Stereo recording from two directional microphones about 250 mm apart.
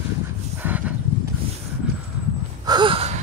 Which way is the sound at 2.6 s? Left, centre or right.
Centre.